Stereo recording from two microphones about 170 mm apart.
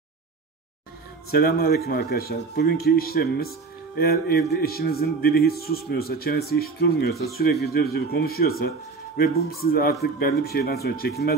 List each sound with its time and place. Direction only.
1.3 s speech: 65° left (ahead or behind)
7.1 s speech: centre (ahead or behind)
7.6 s speech: 65° left (ahead or behind)